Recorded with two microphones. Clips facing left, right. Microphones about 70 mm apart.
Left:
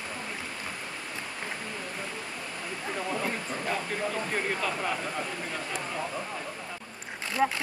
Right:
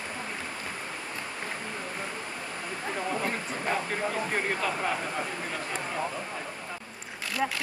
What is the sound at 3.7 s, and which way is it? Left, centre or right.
Speech, centre.